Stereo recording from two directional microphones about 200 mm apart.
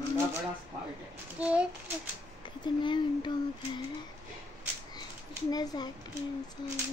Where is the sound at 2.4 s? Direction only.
25° left (ahead or behind).